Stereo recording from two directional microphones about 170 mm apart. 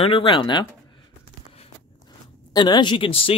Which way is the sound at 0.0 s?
30° left (ahead or behind).